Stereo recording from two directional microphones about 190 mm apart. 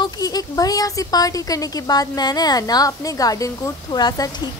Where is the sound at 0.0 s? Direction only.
20° left (ahead or behind).